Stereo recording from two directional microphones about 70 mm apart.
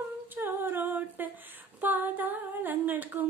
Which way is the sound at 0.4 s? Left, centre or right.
Right.